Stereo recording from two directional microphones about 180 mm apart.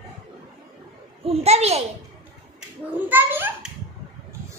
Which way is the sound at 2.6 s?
10° right (ahead or behind).